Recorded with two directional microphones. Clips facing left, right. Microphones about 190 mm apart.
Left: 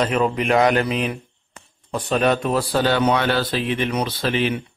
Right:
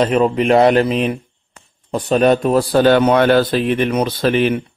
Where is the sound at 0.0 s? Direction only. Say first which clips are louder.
Right 6 dB; 30° right (ahead or behind).